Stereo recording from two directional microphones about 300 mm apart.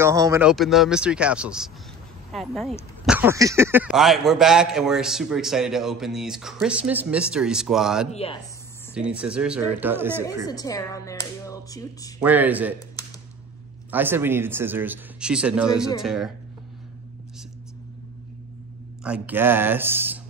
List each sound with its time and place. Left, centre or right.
0.0 s speech: centre
8.1 s speech: centre
8.9 s speech: centre
10.4 s speech: centre
12.2 s speech: centre
13.8 s speech: centre
19.0 s speech: centre